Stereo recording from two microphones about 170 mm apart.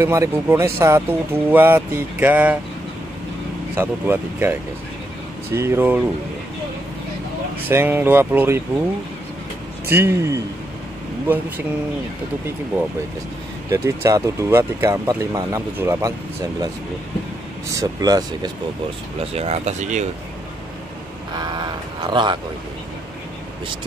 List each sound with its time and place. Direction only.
0.0 s speech: 15° right (ahead or behind)
3.7 s speech: 10° right (ahead or behind)
7.6 s speech: 10° right (ahead or behind)
9.8 s speech: 15° right (ahead or behind)
13.7 s speech: 20° right (ahead or behind)
17.7 s speech: 20° right (ahead or behind)
19.1 s speech: 35° right (ahead or behind)
21.4 s speech: 25° right (ahead or behind)